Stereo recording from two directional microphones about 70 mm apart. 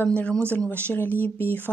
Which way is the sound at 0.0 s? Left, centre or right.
Centre.